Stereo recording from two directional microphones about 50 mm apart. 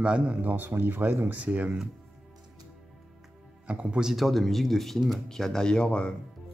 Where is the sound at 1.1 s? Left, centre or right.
Right.